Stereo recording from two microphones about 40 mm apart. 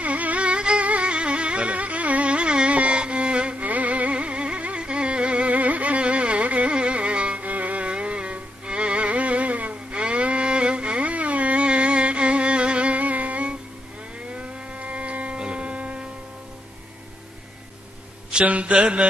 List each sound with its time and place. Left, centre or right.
0.0 s music: right
0.8 s carnatic music: right
4.1 s music: right
7.9 s music: right
18.5 s mantra: right